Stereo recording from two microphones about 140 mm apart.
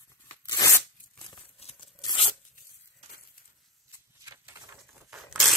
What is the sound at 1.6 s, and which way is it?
Tearing, 50° left (ahead or behind).